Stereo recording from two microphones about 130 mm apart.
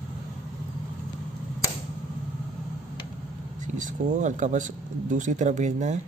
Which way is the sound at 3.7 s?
75° right (ahead or behind).